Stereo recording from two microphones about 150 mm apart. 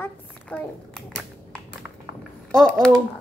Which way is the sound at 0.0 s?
10° left (ahead or behind).